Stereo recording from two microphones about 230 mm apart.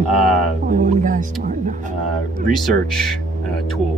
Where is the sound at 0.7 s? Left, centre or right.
Right.